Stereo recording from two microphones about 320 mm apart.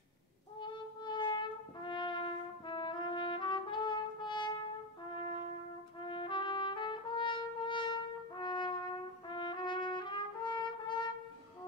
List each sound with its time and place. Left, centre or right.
0.6 s music: centre
5.9 s trumpet: centre